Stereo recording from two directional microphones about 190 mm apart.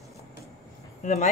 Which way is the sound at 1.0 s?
40° left (ahead or behind).